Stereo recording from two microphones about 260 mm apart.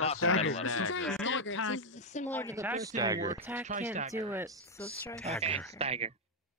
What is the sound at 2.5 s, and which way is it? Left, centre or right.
Speech, centre.